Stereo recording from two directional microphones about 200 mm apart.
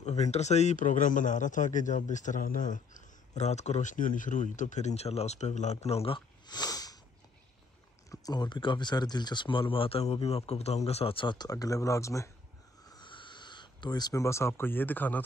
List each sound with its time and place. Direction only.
0.0 s a man's voice: 35° left (ahead or behind); by 7.0 s 20° left (ahead or behind)
8.1 s speech: 20° left (ahead or behind)
12.8 s a sound: 20° left (ahead or behind)